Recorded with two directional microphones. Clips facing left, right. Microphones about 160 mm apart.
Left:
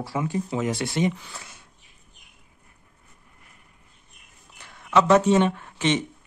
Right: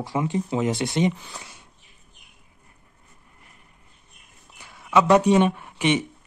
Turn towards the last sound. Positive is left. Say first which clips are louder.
# right 1 dB
turn(degrees=-10)  # may be behind; listen again after turning